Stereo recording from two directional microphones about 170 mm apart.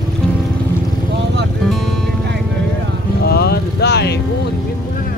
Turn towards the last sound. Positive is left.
turn(degrees=75)  # may be behind; listen again after turning